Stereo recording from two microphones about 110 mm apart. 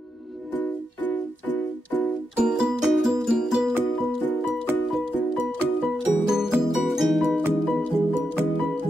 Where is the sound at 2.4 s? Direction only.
5° right (ahead or behind).